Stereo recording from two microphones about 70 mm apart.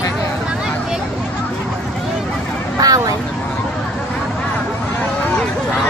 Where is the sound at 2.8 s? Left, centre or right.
Right.